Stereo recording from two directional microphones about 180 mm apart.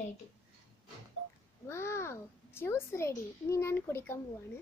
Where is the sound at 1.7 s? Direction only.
15° left (ahead or behind).